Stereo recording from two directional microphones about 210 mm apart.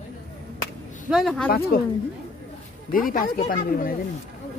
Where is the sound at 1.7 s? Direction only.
45° left (ahead or behind).